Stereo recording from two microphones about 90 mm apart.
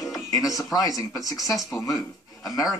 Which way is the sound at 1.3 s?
Centre (ahead or behind).